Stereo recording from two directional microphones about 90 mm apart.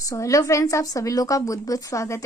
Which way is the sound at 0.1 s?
40° left (ahead or behind).